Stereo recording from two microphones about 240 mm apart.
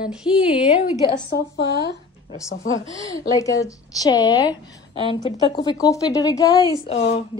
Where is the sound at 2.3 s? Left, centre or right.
Centre.